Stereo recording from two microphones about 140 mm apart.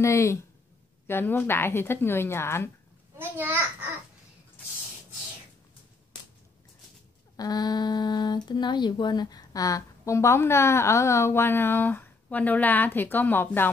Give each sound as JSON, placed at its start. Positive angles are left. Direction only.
{"t": 0.0, "sound": "a woman's voice", "side_deg": 20}
{"t": 3.2, "sound": "a child's voice", "side_deg": -15}
{"t": 7.3, "sound": "speech", "side_deg": 30}